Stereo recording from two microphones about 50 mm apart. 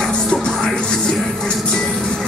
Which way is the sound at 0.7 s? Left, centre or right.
Centre.